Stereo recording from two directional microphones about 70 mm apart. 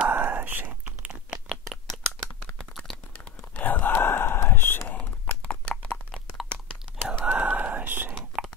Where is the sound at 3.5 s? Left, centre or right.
Left.